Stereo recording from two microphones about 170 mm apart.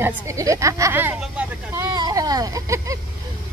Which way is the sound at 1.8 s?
20° right (ahead or behind).